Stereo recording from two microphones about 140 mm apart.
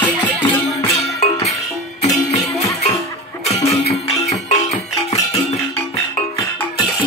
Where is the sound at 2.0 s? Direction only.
55° left (ahead or behind).